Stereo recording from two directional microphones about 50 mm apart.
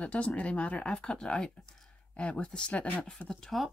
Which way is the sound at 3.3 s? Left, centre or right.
Centre.